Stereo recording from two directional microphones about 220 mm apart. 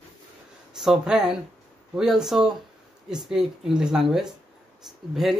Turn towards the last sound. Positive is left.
turn(degrees=0)  # may be behind; listen again after turning